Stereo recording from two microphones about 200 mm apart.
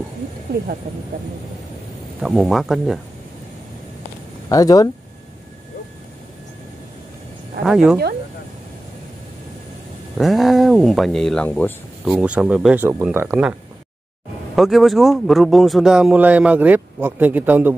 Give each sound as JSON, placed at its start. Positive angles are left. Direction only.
{"t": 2.2, "sound": "a man's voice", "side_deg": 0}
{"t": 4.5, "sound": "speech", "side_deg": 20}
{"t": 7.6, "sound": "a man's voice", "side_deg": 0}
{"t": 10.1, "sound": "a man's voice", "side_deg": 0}
{"t": 12.1, "sound": "a man's voice", "side_deg": -5}